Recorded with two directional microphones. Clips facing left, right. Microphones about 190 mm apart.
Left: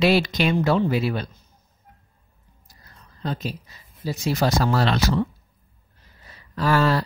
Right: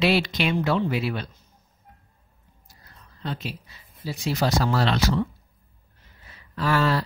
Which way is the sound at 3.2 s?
40° left (ahead or behind).